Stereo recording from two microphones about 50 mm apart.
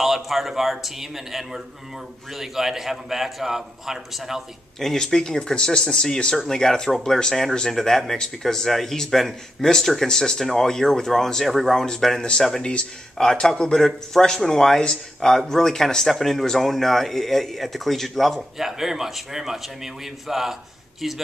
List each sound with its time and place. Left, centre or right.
0.0 s a man's voice: centre
4.7 s a man's voice: centre